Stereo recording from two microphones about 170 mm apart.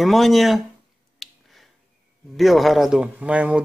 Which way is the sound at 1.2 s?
Centre (ahead or behind).